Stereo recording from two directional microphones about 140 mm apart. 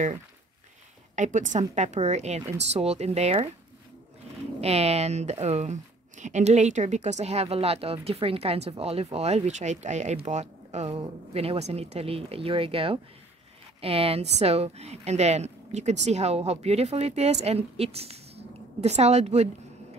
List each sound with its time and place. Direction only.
1.1 s a woman's voice: 60° right (ahead or behind)
4.6 s speech: 50° right (ahead or behind)